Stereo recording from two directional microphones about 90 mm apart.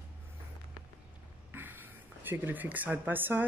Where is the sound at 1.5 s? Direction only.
25° right (ahead or behind).